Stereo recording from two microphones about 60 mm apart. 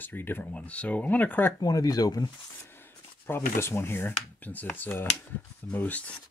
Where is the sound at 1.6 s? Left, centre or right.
Left.